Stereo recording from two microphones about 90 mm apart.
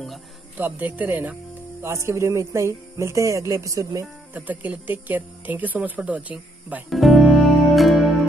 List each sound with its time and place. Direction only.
0.6 s speech: 20° right (ahead or behind); by 4.1 s 40° right (ahead or behind)
4.3 s speech: 20° right (ahead or behind)
6.9 s music: centre (ahead or behind)